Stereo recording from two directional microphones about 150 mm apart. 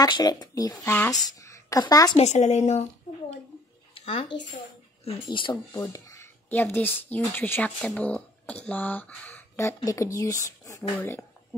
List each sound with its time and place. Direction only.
0.0 s a woman's voice: 25° left (ahead or behind)
2.1 s a woman's voice: 50° left (ahead or behind)
3.9 s a sound: 40° left (ahead or behind)
5.0 s speech: 35° left (ahead or behind)
5.7 s speech: 20° left (ahead or behind)